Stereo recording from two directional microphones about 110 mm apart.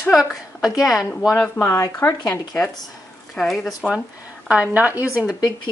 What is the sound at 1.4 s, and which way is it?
Speech, 20° left (ahead or behind).